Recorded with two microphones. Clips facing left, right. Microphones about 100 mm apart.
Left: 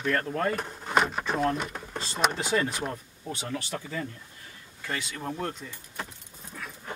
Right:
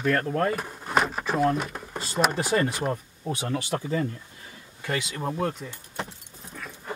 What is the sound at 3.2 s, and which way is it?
Speech, 20° right (ahead or behind).